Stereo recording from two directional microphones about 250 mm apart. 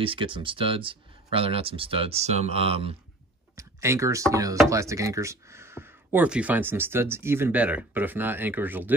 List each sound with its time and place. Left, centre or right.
0.0 s speech: right
3.5 s speech: centre